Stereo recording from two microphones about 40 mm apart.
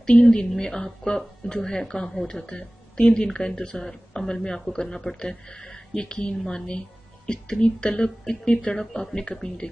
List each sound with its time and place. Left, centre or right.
0.2 s speech: left